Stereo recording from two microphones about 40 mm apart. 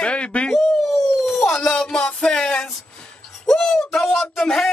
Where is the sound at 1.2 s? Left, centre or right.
Centre.